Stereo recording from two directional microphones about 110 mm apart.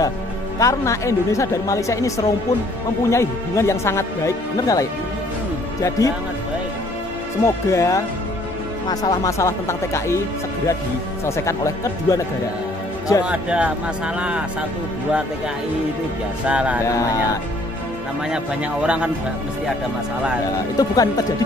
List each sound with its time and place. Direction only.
0.6 s speech: 30° left (ahead or behind)
7.4 s speech: 25° left (ahead or behind)
11.2 s speech: 25° left (ahead or behind)
13.2 s speech: 10° right (ahead or behind)
16.4 s speech: 10° right (ahead or behind)
16.8 s speech: 30° left (ahead or behind)
18.3 s speech: 10° right (ahead or behind)
20.7 s speech: 35° left (ahead or behind)